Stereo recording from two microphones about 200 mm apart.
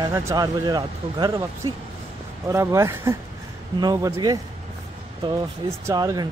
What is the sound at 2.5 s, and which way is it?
Speech, 15° right (ahead or behind).